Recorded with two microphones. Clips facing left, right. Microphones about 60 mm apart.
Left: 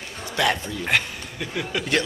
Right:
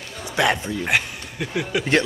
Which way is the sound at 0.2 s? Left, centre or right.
Right.